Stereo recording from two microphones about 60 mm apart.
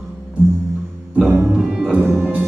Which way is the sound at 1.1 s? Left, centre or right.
Right.